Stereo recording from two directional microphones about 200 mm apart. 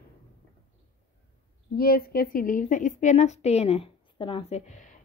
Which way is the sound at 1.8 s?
50° left (ahead or behind).